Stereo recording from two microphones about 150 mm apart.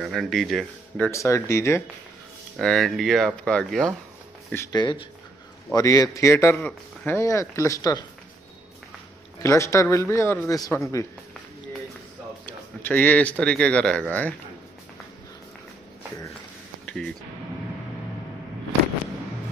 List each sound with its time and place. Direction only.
0.0 s speech: centre (ahead or behind)
1.1 s speech: 20° left (ahead or behind)
2.5 s speech: 5° left (ahead or behind)
4.7 s speech: 30° left (ahead or behind)
9.4 s speech: 20° left (ahead or behind)
12.4 s speech: 10° left (ahead or behind)
16.8 s music: 5° left (ahead or behind)